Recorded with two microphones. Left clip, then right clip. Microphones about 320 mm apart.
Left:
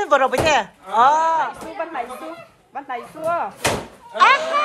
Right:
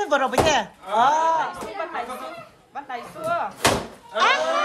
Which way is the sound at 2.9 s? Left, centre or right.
Centre.